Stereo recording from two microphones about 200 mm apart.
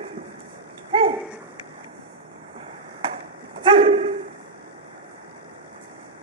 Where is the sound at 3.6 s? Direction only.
25° right (ahead or behind).